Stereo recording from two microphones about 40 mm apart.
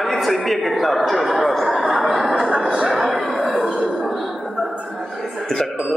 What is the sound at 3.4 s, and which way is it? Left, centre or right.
Chuckle, centre.